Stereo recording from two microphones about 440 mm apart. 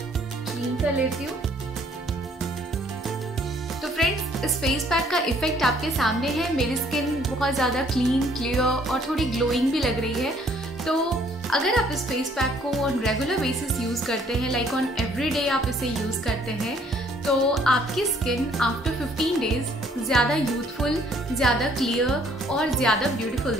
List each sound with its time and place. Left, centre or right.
3.8 s a woman's voice: centre
17.3 s a woman's voice: centre
21.4 s a woman's voice: centre